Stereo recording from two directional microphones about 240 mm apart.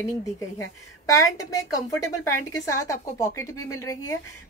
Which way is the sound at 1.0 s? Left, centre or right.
Centre.